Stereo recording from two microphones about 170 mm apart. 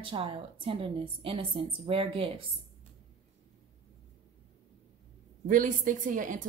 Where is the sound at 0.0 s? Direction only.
30° right (ahead or behind).